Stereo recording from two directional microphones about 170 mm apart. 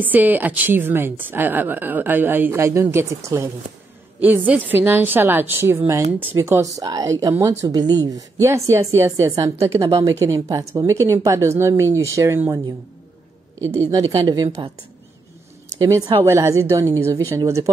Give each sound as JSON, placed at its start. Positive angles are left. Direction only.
{"t": 0.0, "sound": "a woman's voice", "side_deg": -10}
{"t": 13.8, "sound": "a woman's voice", "side_deg": -20}
{"t": 15.8, "sound": "speech", "side_deg": -20}